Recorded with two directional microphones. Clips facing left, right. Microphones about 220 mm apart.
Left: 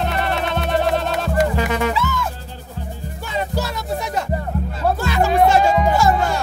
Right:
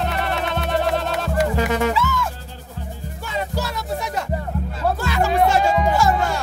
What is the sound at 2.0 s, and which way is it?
Speech, 20° left (ahead or behind).